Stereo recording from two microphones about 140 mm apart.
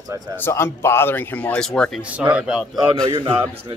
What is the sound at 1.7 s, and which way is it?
Speech, centre (ahead or behind).